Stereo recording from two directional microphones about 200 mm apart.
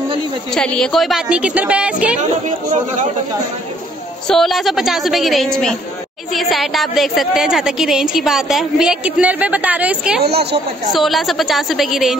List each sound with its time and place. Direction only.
0.6 s a woman's voice: 5° left (ahead or behind)
2.4 s speech: 40° right (ahead or behind)
4.3 s a woman's voice: centre (ahead or behind)
10.2 s speech: 55° right (ahead or behind)
10.9 s a woman's voice: centre (ahead or behind)